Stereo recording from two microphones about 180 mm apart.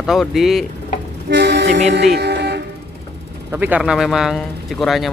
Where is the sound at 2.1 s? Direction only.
65° right (ahead or behind).